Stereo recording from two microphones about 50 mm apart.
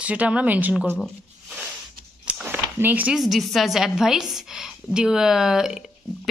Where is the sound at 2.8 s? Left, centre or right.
Right.